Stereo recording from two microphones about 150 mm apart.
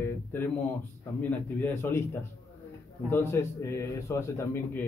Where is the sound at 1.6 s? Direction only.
15° left (ahead or behind).